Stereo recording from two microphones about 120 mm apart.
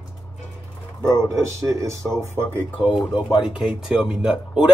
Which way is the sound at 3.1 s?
40° left (ahead or behind).